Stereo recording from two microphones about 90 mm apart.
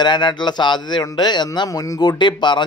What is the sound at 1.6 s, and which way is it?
Speech, 40° left (ahead or behind).